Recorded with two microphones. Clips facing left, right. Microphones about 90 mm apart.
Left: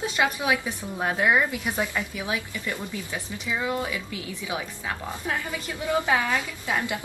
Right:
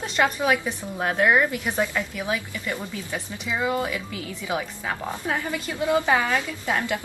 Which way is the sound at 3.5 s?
10° right (ahead or behind).